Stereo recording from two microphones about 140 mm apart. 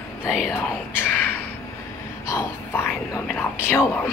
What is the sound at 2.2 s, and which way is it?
Whispering, 15° left (ahead or behind).